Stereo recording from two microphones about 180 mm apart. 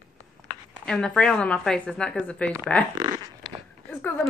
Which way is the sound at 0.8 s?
5° left (ahead or behind).